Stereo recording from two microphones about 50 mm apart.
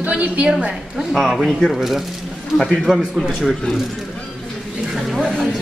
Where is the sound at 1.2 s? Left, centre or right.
Centre.